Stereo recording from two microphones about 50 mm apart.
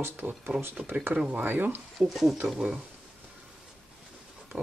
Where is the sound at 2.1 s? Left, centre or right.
Centre.